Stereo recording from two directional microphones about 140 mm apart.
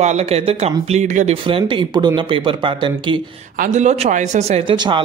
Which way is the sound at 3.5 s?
70° right (ahead or behind).